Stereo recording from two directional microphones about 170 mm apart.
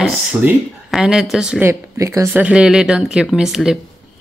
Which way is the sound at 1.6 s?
15° right (ahead or behind).